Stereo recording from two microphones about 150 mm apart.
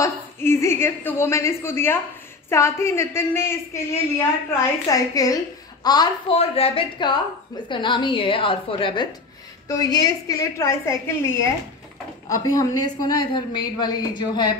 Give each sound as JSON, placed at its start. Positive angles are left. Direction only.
{"t": 0.0, "sound": "a sound", "side_deg": 20}
{"t": 2.5, "sound": "a woman's voice", "side_deg": 20}
{"t": 6.3, "sound": "a woman's voice", "side_deg": 40}